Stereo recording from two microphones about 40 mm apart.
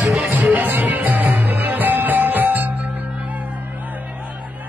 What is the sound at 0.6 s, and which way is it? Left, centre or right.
Music, right.